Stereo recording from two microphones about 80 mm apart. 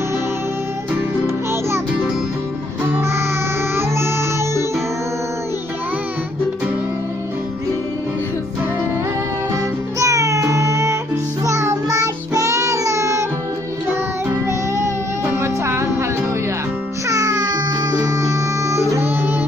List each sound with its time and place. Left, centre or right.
3.7 s music: right
9.9 s music: right
11.4 s child singing: right
15.4 s music: right
17.1 s music: right